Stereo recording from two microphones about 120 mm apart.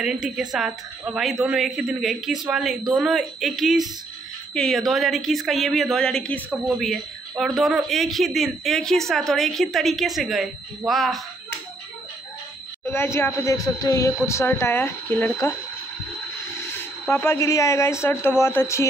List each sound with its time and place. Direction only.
0.0 s speech: 5° right (ahead or behind)
12.8 s speech: 20° left (ahead or behind)
17.1 s speech: 20° left (ahead or behind)